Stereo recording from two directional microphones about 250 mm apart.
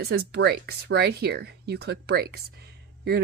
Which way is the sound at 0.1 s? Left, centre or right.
Right.